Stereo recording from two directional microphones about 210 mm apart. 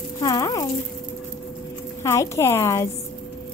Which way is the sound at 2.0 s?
15° left (ahead or behind).